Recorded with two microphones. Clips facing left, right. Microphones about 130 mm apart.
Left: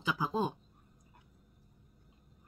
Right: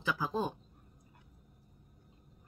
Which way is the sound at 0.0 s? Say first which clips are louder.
Left 1 dB; 15° left (ahead or behind).